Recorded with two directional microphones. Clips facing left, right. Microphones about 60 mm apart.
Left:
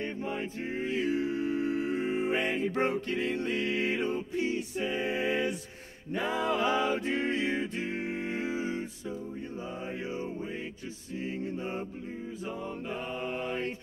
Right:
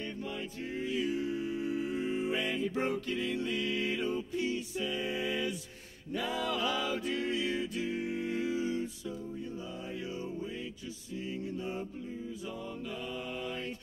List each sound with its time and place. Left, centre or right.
0.0 s music: left
11.4 s music: left
12.9 s music: left